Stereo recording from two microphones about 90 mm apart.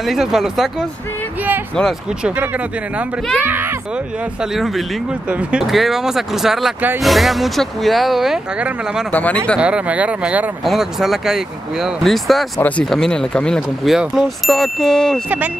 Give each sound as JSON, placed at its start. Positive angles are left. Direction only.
{"t": 0.0, "sound": "speech", "side_deg": -5}
{"t": 2.2, "sound": "speech", "side_deg": -20}
{"t": 4.4, "sound": "speech", "side_deg": 0}
{"t": 5.3, "sound": "speech", "side_deg": -10}
{"t": 8.5, "sound": "speech", "side_deg": -15}
{"t": 9.1, "sound": "speech", "side_deg": 20}
{"t": 9.6, "sound": "speech", "side_deg": -10}
{"t": 10.6, "sound": "speech", "side_deg": -5}
{"t": 15.2, "sound": "speech", "side_deg": -15}